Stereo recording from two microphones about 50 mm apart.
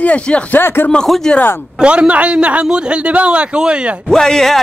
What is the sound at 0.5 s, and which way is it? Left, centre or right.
Speech, left.